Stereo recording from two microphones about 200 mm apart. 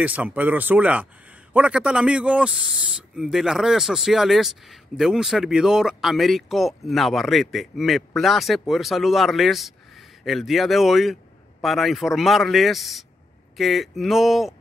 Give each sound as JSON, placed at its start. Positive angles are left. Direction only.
{"t": 0.0, "sound": "speech", "side_deg": -10}